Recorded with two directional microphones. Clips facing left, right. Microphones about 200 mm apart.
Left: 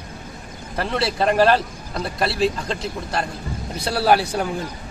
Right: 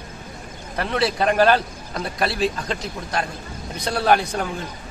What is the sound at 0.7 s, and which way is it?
A man's voice, centre (ahead or behind).